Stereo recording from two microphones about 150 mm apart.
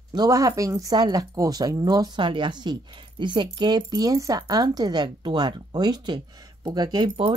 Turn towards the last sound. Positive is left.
turn(degrees=-30)  # may be behind; listen again after turning